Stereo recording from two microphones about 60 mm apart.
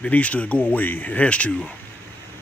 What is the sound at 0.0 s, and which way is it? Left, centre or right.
Speech, left.